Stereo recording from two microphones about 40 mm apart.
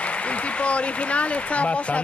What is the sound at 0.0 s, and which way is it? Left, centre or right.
Speech, left.